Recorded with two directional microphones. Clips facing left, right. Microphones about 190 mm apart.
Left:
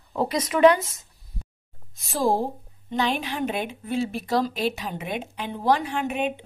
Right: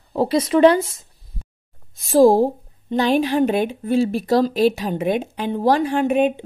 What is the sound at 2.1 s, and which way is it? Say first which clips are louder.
Speech: right 11 dB; 35° right (ahead or behind).